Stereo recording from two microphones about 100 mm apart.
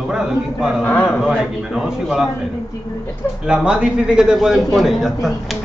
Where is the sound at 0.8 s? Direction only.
20° left (ahead or behind).